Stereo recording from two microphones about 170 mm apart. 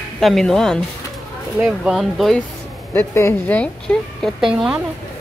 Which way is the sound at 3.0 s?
15° left (ahead or behind).